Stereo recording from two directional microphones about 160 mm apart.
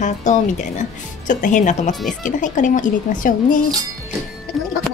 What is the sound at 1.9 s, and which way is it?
Speech, centre (ahead or behind).